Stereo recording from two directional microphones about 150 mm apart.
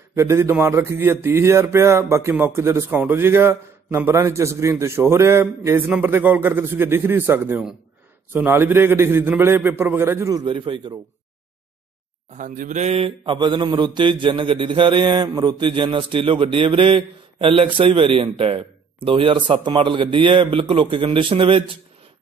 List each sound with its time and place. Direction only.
0.1 s speech: 20° right (ahead or behind)
12.3 s speech: 60° right (ahead or behind); by 21.6 s 35° right (ahead or behind)